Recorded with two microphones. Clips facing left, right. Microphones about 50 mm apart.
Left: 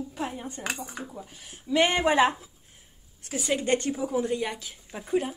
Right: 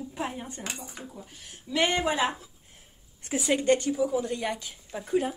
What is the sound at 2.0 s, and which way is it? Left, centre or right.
Speech, left.